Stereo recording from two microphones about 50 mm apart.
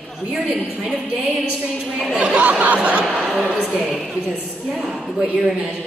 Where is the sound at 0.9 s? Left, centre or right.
Right.